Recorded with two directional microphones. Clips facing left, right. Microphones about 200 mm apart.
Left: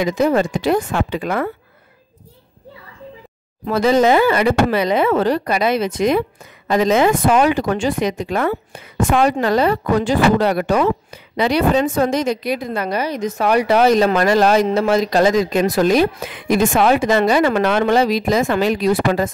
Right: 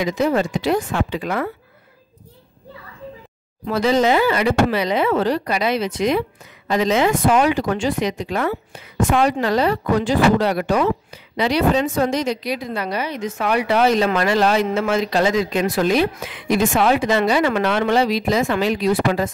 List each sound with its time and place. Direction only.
0.0 s speech: 50° left (ahead or behind)
3.6 s speech: 50° left (ahead or behind)